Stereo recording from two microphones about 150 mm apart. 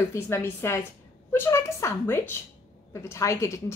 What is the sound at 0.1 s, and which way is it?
A woman's voice, 15° left (ahead or behind).